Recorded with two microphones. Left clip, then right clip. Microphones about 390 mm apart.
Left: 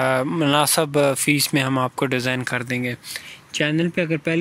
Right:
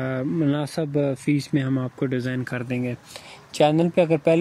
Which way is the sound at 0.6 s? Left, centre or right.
Left.